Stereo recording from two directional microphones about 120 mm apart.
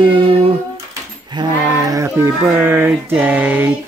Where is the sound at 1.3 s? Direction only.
35° right (ahead or behind).